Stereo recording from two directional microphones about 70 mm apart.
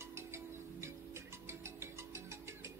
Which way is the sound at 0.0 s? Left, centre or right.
Right.